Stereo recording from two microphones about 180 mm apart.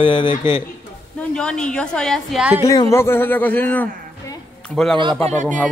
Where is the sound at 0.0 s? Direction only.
25° left (ahead or behind).